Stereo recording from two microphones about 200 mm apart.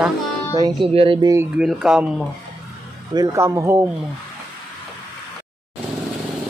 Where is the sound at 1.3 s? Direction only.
5° right (ahead or behind).